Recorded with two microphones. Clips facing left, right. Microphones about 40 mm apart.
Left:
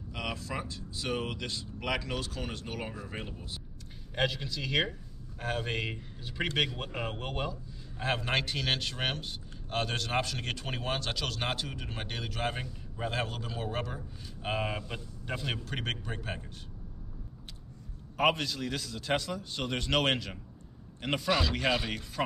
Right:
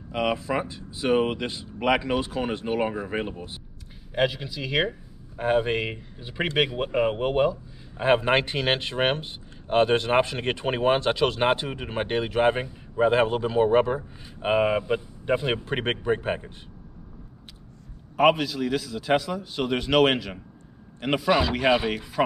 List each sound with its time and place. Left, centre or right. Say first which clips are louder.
0.1 s speech: right 11 dB; right
4.1 s a man's voice: right 6 dB; centre; by 16.5 s right
18.1 s a man's voice: right 8 dB; centre